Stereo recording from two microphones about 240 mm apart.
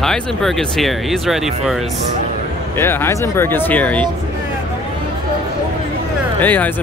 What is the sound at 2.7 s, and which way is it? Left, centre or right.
Speech, centre.